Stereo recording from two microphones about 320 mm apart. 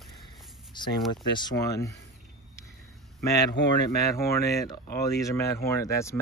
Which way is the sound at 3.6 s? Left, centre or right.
Left.